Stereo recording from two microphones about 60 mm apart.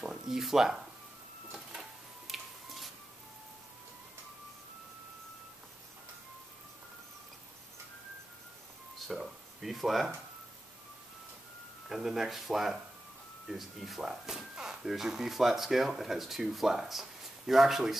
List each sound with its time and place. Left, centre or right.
0.0 s speech: centre
1.7 s tick-tock: centre
9.0 s speech: centre
11.9 s speech: centre